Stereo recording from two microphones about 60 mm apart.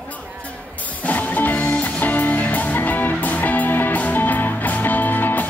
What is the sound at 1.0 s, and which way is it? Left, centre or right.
Music, left.